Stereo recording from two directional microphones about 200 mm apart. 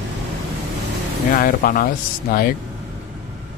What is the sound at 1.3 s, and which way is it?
Speech, 45° left (ahead or behind).